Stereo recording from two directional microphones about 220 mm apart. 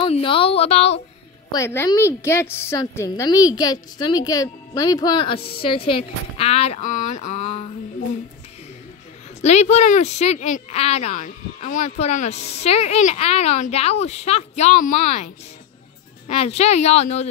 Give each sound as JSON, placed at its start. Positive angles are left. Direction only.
{"t": 0.0, "sound": "speech", "side_deg": 25}
{"t": 1.5, "sound": "a woman's voice", "side_deg": 10}
{"t": 9.4, "sound": "speech", "side_deg": 30}